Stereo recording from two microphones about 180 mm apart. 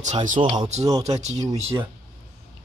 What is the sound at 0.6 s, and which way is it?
Speech, 40° right (ahead or behind).